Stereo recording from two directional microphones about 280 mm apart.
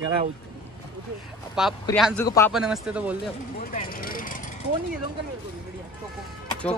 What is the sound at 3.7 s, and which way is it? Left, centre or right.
Vehicle, left.